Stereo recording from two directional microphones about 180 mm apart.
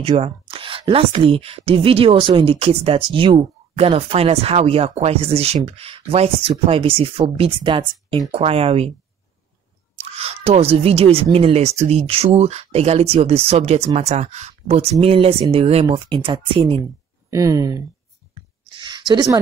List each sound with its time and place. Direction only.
0.0 s a woman's voice: 35° right (ahead or behind)
10.1 s a woman's voice: 35° right (ahead or behind)
17.3 s speech: 20° right (ahead or behind)
18.8 s a sound: 25° right (ahead or behind)